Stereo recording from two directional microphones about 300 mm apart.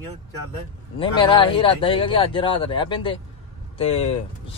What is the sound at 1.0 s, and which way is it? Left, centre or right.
Speech, centre.